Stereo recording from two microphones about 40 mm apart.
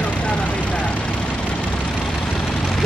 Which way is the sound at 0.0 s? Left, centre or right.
Left.